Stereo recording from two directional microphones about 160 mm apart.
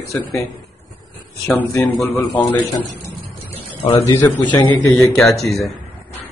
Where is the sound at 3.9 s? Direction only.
20° left (ahead or behind).